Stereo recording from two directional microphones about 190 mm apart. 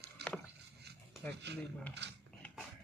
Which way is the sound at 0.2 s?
60° right (ahead or behind).